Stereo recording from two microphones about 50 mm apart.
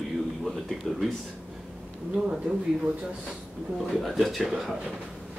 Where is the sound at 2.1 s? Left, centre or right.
Centre.